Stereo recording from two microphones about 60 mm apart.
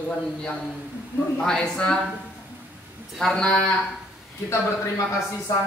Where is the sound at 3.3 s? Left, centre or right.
Centre.